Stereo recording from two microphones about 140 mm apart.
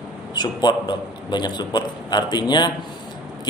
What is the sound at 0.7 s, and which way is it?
A man's voice, 30° left (ahead or behind).